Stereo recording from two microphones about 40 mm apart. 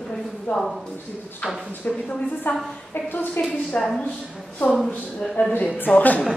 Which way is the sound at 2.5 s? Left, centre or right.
Left.